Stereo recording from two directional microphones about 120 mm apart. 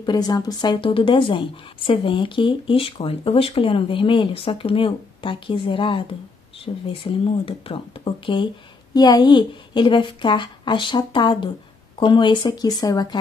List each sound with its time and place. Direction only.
0.0 s a woman's voice: 35° left (ahead or behind)
8.9 s a woman's voice: 35° left (ahead or behind)